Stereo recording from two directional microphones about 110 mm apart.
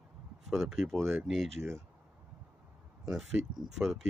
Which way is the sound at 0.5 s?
5° right (ahead or behind).